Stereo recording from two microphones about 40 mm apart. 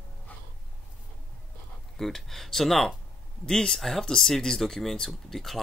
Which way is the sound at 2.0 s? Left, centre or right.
Centre.